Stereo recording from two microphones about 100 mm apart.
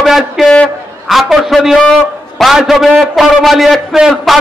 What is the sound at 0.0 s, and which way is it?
A man's voice, centre (ahead or behind).